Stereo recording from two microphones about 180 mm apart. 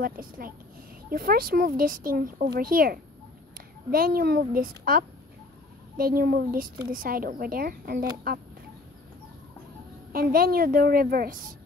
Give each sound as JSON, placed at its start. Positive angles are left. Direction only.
{"t": 0.0, "sound": "a woman's voice", "side_deg": -50}
{"t": 10.1, "sound": "speech", "side_deg": -55}